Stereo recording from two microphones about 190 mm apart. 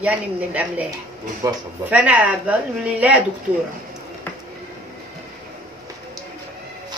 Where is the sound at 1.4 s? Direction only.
20° right (ahead or behind).